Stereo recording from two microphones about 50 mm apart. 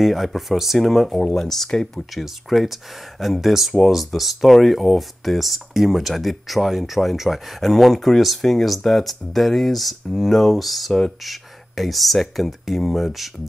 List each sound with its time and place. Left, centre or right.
0.0 s speech: centre
1.2 s speech: centre
1.5 s speech: centre
2.2 s speech: centre